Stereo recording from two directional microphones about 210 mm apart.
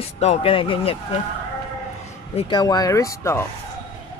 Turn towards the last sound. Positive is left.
turn(degrees=15)  # may be behind; listen again after turning